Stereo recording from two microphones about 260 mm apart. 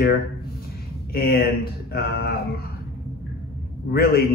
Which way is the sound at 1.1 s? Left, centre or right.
Left.